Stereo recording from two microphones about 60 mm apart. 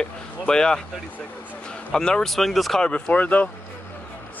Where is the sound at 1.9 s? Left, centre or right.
Centre.